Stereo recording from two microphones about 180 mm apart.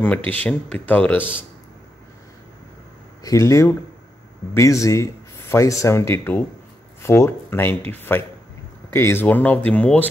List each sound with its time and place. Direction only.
0.3 s speech: 5° left (ahead or behind)
3.3 s speech: 15° left (ahead or behind)